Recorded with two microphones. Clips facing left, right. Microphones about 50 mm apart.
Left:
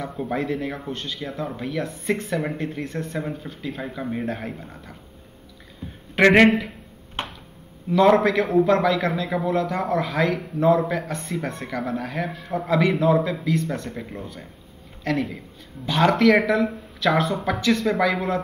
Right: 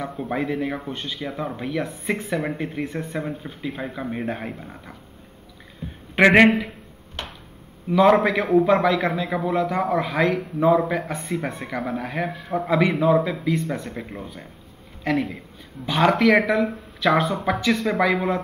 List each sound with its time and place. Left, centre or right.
0.0 s speech: centre
6.1 s a man's voice: centre
7.2 s a sound: left
7.9 s a man's voice: centre